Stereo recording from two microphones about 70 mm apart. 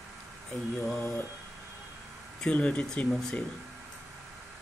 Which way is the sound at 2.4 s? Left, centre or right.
Centre.